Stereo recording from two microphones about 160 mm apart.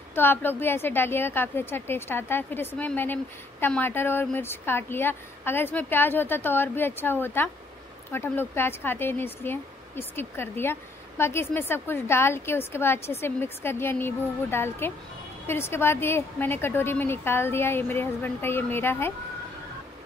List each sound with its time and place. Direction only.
0.1 s speech: 15° left (ahead or behind)